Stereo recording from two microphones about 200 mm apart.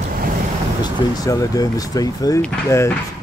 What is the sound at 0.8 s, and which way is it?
Speech, 15° left (ahead or behind).